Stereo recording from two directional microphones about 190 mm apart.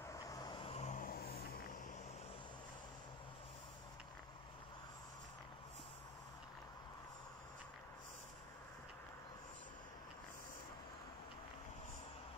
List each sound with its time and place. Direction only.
0.1 s vehicle: 20° left (ahead or behind); by 1.2 s 45° left (ahead or behind)